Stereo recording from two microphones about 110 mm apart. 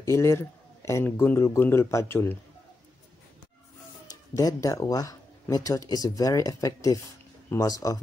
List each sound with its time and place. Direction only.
0.0 s speech: 25° left (ahead or behind)
4.1 s speech: 30° left (ahead or behind)